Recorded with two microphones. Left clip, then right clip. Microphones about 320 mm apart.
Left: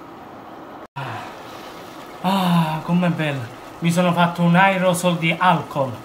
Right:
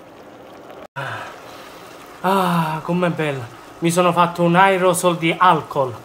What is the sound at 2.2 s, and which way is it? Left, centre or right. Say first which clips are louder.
Speech: right 3 dB; centre.